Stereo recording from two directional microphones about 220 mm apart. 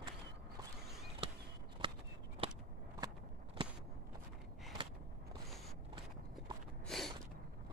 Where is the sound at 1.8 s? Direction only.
25° right (ahead or behind).